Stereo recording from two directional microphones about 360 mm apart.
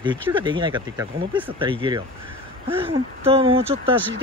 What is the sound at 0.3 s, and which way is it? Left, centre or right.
Speech, centre.